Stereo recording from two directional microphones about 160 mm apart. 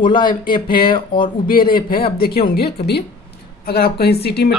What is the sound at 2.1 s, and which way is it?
Speech, 75° left (ahead or behind).